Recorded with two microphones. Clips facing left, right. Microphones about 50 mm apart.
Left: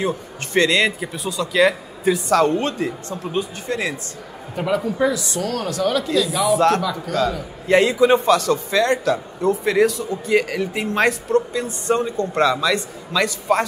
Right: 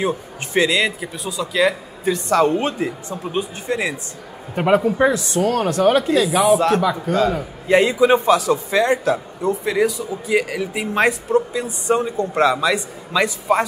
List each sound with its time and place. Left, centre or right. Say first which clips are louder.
0.5 s speech: left 1 dB; centre
4.6 s speech: right 4 dB; right
6.0 s speech: right 4 dB; centre
6.8 s speech: right 3 dB; right
7.6 s a man's voice: even; centre